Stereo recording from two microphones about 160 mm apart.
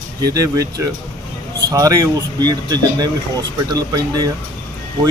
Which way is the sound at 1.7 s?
20° right (ahead or behind).